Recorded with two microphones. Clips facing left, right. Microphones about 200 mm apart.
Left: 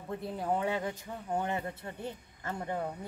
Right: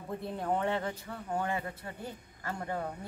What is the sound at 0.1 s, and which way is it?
Speech, 5° left (ahead or behind).